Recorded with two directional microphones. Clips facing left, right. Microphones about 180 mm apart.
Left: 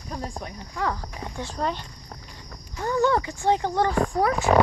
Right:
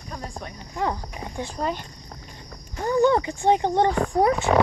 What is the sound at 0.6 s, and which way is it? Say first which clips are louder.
Speech: right 2 dB; 20° right (ahead or behind).